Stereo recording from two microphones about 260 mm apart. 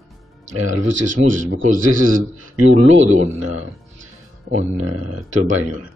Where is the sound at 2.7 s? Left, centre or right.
Right.